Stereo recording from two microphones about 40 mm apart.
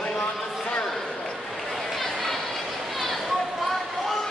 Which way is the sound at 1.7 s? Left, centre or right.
Centre.